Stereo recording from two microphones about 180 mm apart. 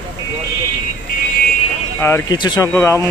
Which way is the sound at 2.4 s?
25° left (ahead or behind).